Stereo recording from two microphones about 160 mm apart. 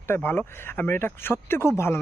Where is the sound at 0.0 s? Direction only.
15° left (ahead or behind).